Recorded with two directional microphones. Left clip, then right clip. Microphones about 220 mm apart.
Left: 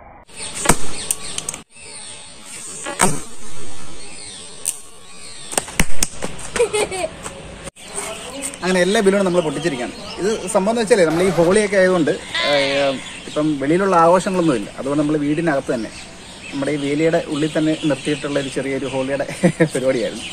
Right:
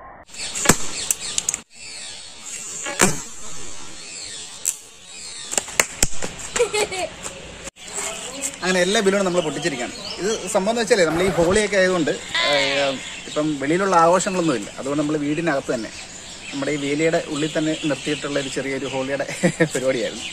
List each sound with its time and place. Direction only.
0.7 s chop: centre (ahead or behind)
2.8 s power windows: 5° left (ahead or behind)
6.5 s a sound: 5° left (ahead or behind)
8.0 s a man's voice: centre (ahead or behind)
13.3 s speech: 15° right (ahead or behind)